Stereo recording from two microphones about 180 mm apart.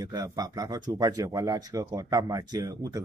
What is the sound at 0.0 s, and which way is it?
Speech, 20° right (ahead or behind).